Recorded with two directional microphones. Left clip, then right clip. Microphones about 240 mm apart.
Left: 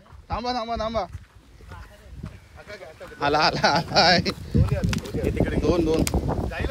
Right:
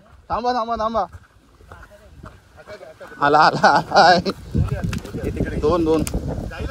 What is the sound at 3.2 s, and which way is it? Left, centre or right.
Speech, centre.